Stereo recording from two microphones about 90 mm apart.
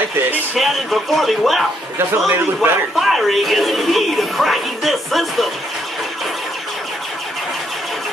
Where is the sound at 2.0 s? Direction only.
25° right (ahead or behind).